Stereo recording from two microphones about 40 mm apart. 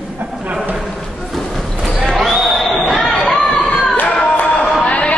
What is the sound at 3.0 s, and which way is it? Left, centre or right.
Chatter, centre.